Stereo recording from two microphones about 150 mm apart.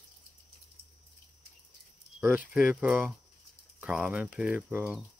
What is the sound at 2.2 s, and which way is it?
Speech, 10° right (ahead or behind).